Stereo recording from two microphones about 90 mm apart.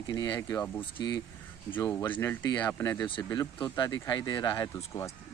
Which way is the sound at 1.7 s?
20° left (ahead or behind).